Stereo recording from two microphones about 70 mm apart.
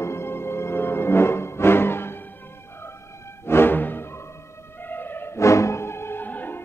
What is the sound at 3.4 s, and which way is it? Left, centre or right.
Music, left.